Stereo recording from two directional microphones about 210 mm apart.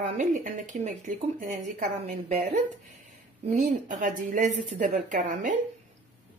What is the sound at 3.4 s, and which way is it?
A woman's voice, 35° right (ahead or behind).